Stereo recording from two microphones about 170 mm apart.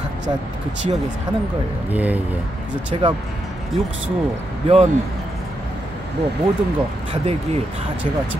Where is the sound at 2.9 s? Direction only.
30° right (ahead or behind).